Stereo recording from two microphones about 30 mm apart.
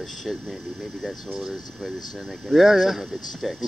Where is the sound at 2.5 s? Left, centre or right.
Centre.